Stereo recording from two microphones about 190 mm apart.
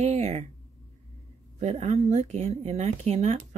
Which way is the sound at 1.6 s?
35° right (ahead or behind).